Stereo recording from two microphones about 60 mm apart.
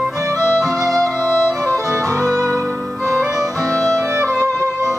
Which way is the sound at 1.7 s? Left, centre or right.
Right.